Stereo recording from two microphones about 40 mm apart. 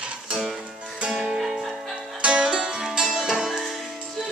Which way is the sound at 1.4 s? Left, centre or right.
Centre.